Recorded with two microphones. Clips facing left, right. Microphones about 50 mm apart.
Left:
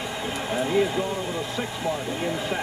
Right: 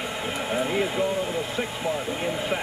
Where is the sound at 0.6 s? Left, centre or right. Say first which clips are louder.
Left 3 dB; centre.